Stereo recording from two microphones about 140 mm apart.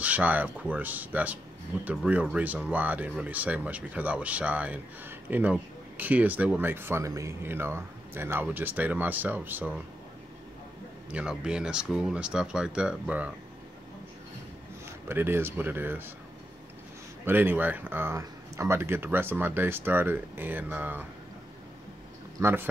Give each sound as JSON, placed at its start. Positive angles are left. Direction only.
{"t": 0.0, "sound": "speech", "side_deg": -10}
{"t": 11.1, "sound": "speech", "side_deg": -5}
{"t": 15.0, "sound": "speech", "side_deg": -15}
{"t": 17.2, "sound": "speech", "side_deg": -15}
{"t": 22.4, "sound": "speech", "side_deg": -15}